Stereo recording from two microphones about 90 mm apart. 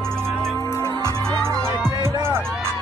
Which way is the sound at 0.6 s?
35° left (ahead or behind).